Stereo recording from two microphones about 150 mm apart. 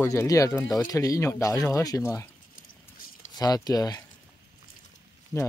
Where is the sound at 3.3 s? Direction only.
25° left (ahead or behind).